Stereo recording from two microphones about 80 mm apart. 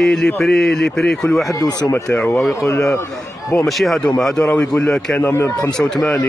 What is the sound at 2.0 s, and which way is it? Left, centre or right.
Speech, centre.